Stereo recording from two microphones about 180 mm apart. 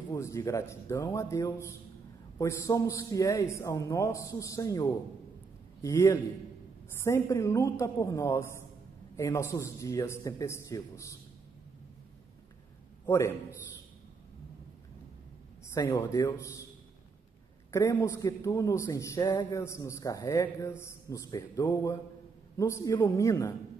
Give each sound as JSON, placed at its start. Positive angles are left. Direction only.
{"t": 0.1, "sound": "a woman's voice", "side_deg": 15}
{"t": 13.0, "sound": "a man's voice", "side_deg": 15}
{"t": 15.7, "sound": "a woman's voice", "side_deg": 15}
{"t": 17.6, "sound": "a woman's voice", "side_deg": 15}